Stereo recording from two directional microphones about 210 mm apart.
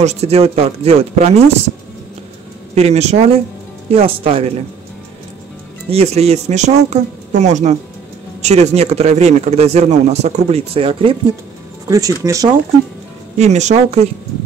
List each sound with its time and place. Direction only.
0.0 s speech: 30° right (ahead or behind)
2.7 s speech: 30° right (ahead or behind)
5.9 s speech: 30° right (ahead or behind)
11.9 s speech: 15° right (ahead or behind)
13.4 s speech: 35° right (ahead or behind)